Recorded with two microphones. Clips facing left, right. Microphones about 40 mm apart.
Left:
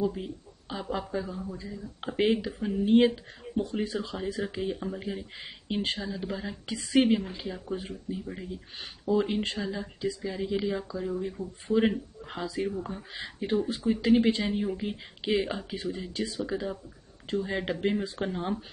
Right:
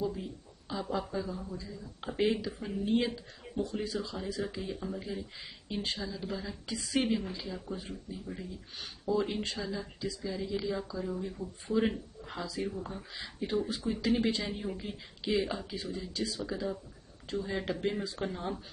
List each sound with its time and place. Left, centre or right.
0.2 s speech: left
6.0 s speech: left
6.7 s speech: left
9.4 s speech: left